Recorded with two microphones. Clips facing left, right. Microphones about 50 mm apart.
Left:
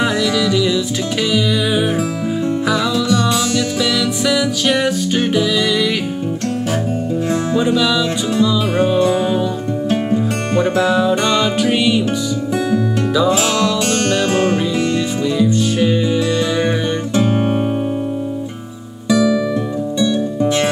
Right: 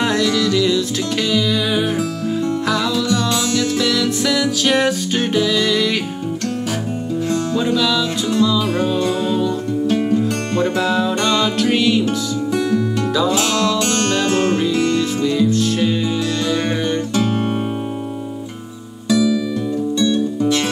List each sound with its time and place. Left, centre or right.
0.0 s music: centre
7.6 s music: centre
13.9 s music: left
15.0 s music: centre